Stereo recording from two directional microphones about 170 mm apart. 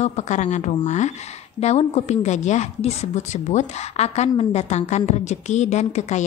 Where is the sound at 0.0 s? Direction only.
45° left (ahead or behind).